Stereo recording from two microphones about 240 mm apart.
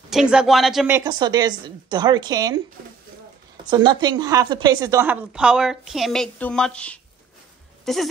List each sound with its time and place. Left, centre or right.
0.1 s a woman's voice: centre
3.7 s a woman's voice: centre